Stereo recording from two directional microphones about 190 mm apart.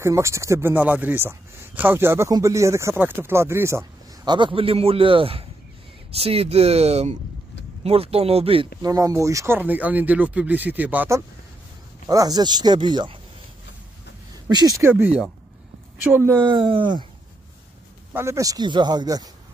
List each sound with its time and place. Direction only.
0.0 s speech: 15° right (ahead or behind)
8.9 s speech: 15° right (ahead or behind)
14.5 s speech: 20° right (ahead or behind)
16.4 s speech: 25° right (ahead or behind)
18.1 s speech: 15° right (ahead or behind)